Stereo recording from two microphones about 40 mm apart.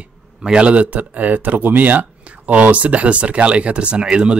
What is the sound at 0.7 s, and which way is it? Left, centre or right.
A man's voice, right.